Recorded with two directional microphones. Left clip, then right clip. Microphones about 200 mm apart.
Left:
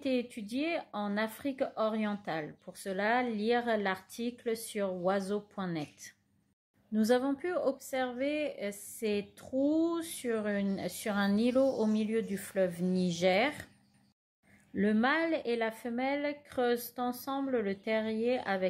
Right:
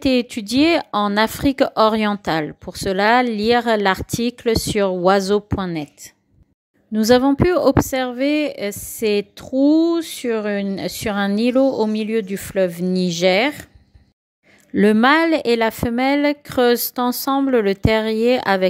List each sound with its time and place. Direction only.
0.0 s a woman's voice: 45° right (ahead or behind)
14.7 s speech: 50° right (ahead or behind)